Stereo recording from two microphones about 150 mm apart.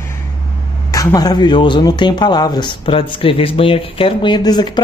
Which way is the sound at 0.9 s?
25° left (ahead or behind).